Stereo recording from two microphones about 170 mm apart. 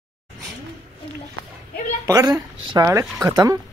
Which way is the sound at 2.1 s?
20° right (ahead or behind).